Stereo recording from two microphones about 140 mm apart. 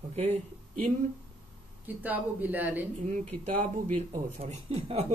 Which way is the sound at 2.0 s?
10° right (ahead or behind).